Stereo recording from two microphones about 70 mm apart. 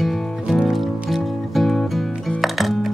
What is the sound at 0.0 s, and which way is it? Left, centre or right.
Music, centre.